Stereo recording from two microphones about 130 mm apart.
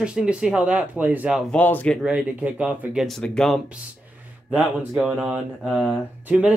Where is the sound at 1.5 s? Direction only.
15° left (ahead or behind).